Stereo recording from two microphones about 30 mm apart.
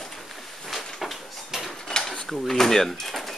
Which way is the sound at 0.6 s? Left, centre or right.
Centre.